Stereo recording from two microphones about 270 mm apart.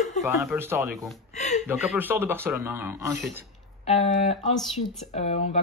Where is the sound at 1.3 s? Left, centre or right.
Left.